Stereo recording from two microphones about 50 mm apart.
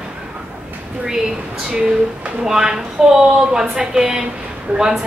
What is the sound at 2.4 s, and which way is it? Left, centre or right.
A woman's voice, centre.